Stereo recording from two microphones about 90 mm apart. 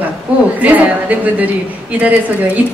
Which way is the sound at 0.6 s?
15° right (ahead or behind).